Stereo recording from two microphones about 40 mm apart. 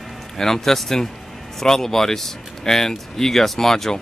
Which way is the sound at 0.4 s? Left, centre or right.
Centre.